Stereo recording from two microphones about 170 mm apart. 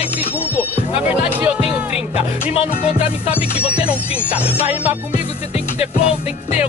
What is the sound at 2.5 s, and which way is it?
Speech, 35° left (ahead or behind).